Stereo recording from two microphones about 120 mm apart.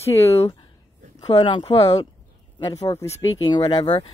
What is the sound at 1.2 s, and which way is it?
A woman's voice, 40° left (ahead or behind).